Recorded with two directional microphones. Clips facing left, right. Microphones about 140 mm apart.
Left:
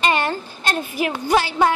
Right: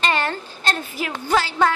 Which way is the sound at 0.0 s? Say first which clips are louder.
Left 2 dB; 15° left (ahead or behind).